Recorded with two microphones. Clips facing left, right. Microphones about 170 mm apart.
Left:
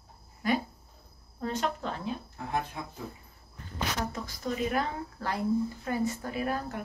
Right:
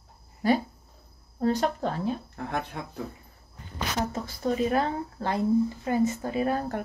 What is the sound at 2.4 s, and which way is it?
Speech, 65° right (ahead or behind).